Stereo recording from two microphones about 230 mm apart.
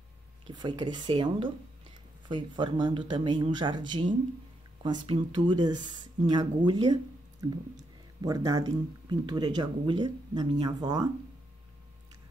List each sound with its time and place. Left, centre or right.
0.5 s speech: centre